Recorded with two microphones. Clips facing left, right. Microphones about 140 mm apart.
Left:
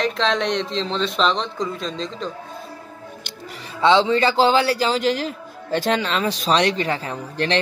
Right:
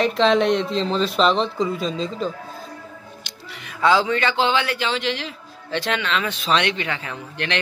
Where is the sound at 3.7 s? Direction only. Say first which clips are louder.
Left 2 dB; 25° left (ahead or behind).